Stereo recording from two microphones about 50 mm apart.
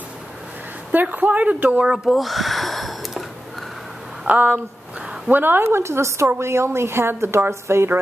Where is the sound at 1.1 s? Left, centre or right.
Right.